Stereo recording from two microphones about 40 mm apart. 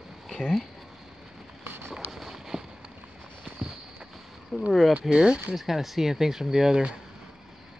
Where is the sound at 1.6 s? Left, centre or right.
Right.